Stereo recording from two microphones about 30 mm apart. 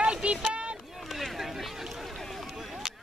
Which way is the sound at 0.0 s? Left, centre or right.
Right.